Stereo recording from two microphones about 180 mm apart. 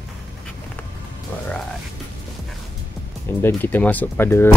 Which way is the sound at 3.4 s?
10° left (ahead or behind).